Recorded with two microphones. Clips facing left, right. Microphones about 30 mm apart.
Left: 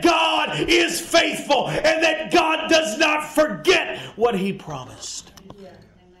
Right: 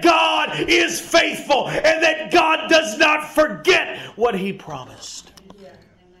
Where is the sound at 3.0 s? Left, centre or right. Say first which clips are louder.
Right 3 dB; centre.